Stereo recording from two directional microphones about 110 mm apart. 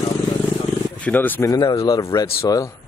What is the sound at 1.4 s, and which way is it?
A man's voice, 35° left (ahead or behind).